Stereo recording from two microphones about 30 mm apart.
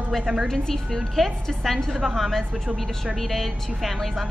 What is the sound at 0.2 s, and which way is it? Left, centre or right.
Speech, right.